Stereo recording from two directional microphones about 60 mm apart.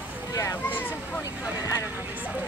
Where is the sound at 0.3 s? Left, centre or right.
Left.